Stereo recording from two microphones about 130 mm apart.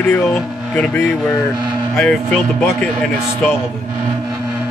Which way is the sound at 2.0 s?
5° left (ahead or behind).